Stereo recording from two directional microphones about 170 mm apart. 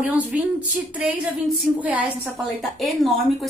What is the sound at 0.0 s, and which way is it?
Speech, 10° right (ahead or behind).